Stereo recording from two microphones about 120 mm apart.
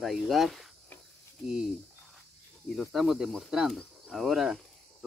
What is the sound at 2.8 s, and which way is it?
Speech, centre (ahead or behind).